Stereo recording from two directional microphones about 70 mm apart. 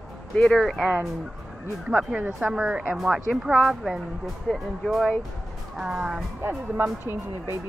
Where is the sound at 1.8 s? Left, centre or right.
Centre.